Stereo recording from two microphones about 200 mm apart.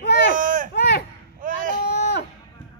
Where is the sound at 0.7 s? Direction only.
55° left (ahead or behind).